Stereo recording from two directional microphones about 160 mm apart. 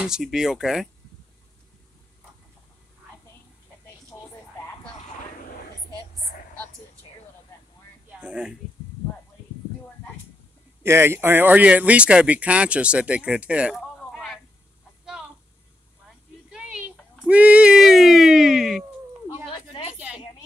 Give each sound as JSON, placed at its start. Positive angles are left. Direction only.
{"t": 0.0, "sound": "speech", "side_deg": -5}
{"t": 4.1, "sound": "a sound", "side_deg": 10}
{"t": 8.2, "sound": "speech", "side_deg": -5}
{"t": 10.8, "sound": "speech", "side_deg": -15}
{"t": 16.4, "sound": "a sound", "side_deg": -5}
{"t": 17.3, "sound": "speech", "side_deg": -10}